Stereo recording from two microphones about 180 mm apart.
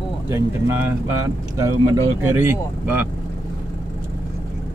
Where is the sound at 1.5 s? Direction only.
20° right (ahead or behind).